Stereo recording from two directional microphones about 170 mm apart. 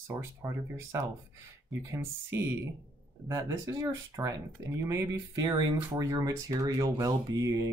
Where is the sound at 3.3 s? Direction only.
15° right (ahead or behind).